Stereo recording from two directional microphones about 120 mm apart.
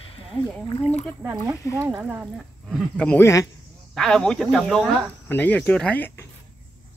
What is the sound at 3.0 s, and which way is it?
Speech, 10° left (ahead or behind).